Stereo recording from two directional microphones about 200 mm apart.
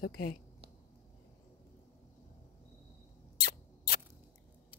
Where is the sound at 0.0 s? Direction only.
50° left (ahead or behind).